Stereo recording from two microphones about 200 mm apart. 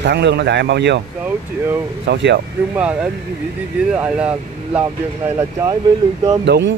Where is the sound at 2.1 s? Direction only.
60° right (ahead or behind).